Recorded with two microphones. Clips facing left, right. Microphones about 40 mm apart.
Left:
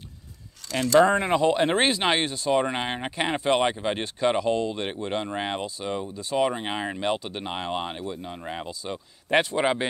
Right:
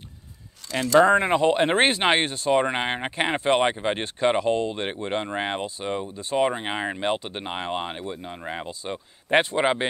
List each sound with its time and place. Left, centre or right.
0.9 s speech: right
2.5 s speech: right
8.6 s speech: right